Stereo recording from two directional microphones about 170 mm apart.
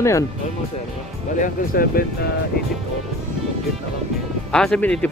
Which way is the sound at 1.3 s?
55° left (ahead or behind).